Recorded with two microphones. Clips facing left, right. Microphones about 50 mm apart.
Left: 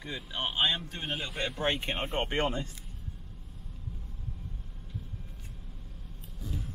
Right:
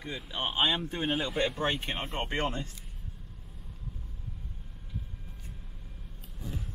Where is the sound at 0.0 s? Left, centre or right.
Centre.